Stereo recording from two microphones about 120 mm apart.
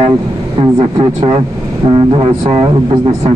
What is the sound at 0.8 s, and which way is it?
Speech, 40° right (ahead or behind).